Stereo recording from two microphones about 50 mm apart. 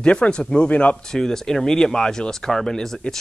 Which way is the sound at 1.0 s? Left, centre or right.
Centre.